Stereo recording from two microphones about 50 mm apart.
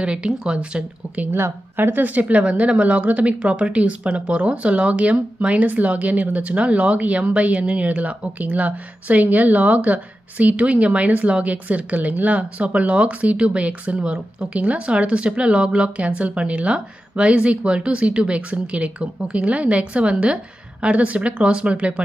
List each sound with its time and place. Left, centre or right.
0.0 s speech: centre
1.3 s speech: right
2.0 s speech: right